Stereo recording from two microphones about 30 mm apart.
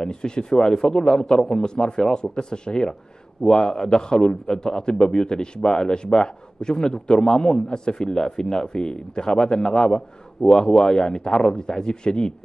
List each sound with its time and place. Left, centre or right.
0.0 s a man's voice: left
1.0 s a man's voice: centre
1.3 s a man's voice: left